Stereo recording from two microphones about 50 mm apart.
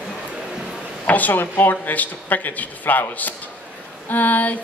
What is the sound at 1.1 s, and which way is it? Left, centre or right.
Speech, left.